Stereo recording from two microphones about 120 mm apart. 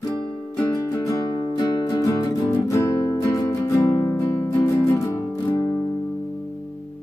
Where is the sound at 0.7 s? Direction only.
25° left (ahead or behind).